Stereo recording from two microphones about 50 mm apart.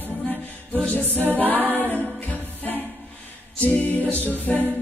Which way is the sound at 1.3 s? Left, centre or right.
Left.